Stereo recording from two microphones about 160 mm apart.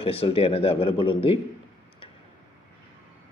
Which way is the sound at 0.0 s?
35° left (ahead or behind).